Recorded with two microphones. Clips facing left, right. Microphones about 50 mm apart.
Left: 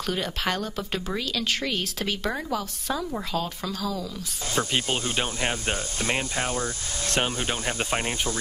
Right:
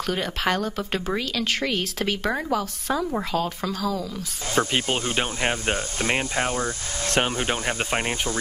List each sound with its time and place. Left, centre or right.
0.1 s speech: right
4.6 s speech: right